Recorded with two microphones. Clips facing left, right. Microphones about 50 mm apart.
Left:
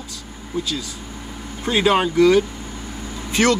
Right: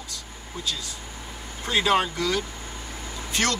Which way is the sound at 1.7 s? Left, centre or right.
Centre.